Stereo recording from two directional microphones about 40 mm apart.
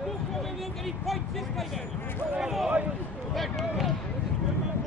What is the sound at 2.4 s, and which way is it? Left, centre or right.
Speech, centre.